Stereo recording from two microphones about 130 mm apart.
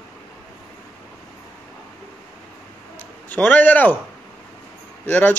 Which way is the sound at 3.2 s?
10° left (ahead or behind).